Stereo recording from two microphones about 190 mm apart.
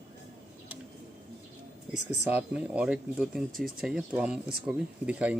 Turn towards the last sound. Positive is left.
turn(degrees=-5)  # may be behind; listen again after turning